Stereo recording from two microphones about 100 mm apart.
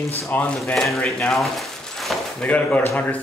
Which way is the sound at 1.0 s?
10° left (ahead or behind).